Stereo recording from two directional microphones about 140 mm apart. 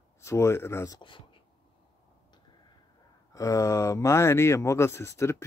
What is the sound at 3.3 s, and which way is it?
Speech, 25° left (ahead or behind).